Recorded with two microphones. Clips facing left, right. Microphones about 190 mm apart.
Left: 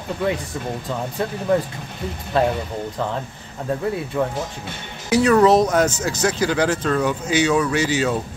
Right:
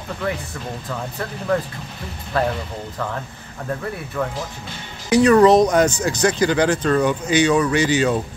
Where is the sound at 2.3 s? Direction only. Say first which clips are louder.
Left 2 dB; 25° left (ahead or behind).